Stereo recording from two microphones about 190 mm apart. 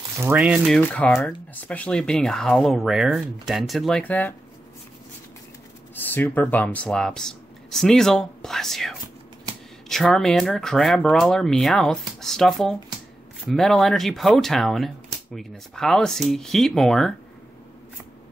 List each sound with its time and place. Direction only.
0.2 s speech: 10° right (ahead or behind); by 4.3 s 10° left (ahead or behind)
5.9 s speech: 10° left (ahead or behind)